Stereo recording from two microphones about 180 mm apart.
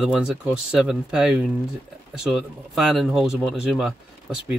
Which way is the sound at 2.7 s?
Centre (ahead or behind).